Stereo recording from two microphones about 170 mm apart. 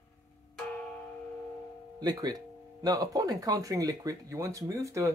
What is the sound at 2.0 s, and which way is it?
Speech, 25° right (ahead or behind).